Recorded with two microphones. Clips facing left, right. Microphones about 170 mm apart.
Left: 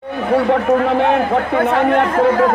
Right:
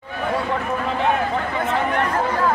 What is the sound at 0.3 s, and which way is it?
Speech, 65° left (ahead or behind).